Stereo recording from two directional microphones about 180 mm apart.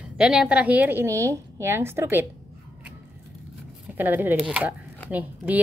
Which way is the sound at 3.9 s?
10° right (ahead or behind).